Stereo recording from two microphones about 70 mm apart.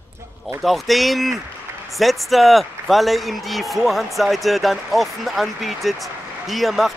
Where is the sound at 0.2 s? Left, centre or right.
Right.